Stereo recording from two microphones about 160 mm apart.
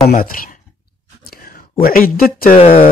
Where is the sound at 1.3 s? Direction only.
65° left (ahead or behind).